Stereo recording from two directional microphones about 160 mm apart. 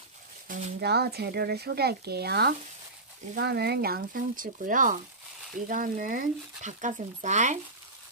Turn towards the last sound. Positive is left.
turn(degrees=-50)  # may be behind; listen again after turning